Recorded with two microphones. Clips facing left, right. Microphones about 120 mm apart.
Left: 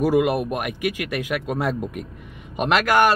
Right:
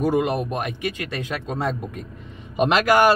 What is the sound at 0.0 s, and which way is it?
Speech, 10° left (ahead or behind).